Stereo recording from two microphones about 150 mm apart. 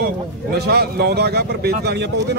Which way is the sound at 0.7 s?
90° right.